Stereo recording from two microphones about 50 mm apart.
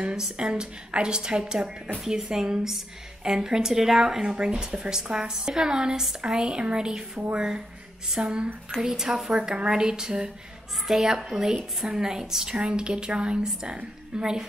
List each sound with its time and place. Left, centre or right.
0.1 s a woman's voice: centre